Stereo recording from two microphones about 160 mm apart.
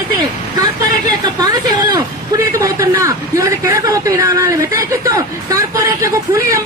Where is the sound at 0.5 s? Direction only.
25° right (ahead or behind).